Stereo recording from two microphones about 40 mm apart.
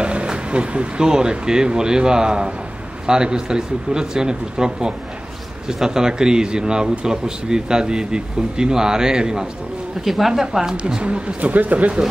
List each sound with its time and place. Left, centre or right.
0.0 s a man's voice: right
10.0 s speech: centre
11.0 s speech: right